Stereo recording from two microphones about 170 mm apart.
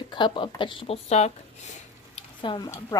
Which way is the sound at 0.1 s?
30° left (ahead or behind).